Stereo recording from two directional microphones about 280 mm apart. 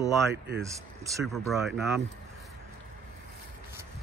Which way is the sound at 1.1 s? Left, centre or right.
Centre.